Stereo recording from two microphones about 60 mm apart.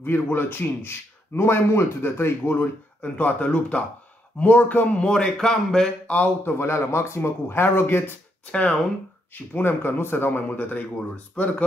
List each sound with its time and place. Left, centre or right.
0.0 s a man's voice: left
3.0 s speech: left
5.0 s speech: centre
6.0 s speech: left
6.6 s a man's voice: left
8.5 s speech: left
9.3 s a man's voice: left